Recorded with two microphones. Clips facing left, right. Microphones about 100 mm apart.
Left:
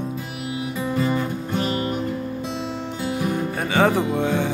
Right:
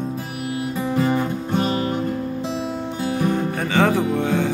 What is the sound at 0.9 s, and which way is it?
Music, 30° right (ahead or behind).